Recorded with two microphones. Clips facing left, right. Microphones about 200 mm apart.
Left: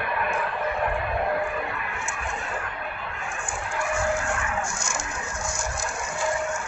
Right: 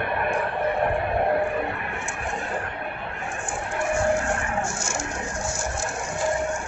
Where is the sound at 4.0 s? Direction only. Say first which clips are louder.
Right 4 dB; 30° right (ahead or behind).